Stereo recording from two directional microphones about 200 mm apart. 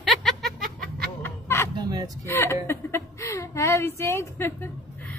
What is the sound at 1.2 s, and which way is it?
Fowl, 15° left (ahead or behind).